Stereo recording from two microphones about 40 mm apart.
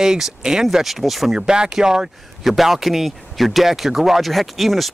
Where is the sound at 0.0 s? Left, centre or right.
Centre.